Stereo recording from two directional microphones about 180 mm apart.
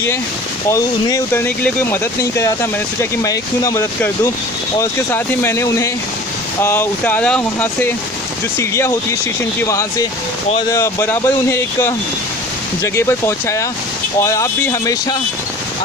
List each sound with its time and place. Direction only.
0.7 s speech: 20° left (ahead or behind)